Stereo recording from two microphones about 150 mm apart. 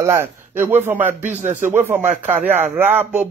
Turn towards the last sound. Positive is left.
turn(degrees=-10)  # may be behind; listen again after turning